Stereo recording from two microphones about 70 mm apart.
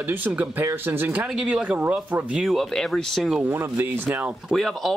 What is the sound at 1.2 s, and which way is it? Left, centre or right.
Speech, centre.